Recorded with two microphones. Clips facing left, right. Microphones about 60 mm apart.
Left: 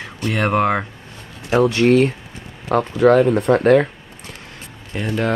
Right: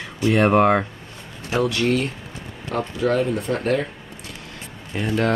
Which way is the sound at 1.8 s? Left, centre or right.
Left.